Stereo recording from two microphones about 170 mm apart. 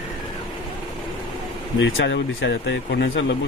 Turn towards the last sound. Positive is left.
turn(degrees=90)